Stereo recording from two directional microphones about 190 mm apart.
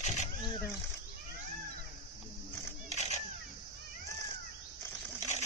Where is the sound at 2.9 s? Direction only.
35° left (ahead or behind).